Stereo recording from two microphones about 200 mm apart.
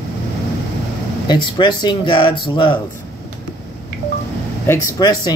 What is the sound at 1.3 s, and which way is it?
Speech, 20° left (ahead or behind).